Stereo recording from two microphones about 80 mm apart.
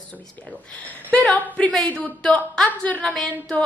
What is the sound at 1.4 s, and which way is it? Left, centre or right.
A woman's voice, centre.